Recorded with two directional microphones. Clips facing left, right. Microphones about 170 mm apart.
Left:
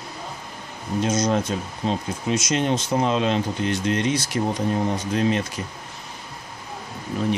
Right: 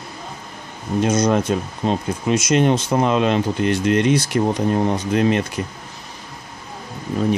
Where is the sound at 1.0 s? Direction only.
55° right (ahead or behind).